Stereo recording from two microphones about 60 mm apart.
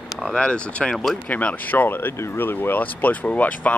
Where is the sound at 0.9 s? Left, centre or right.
Centre.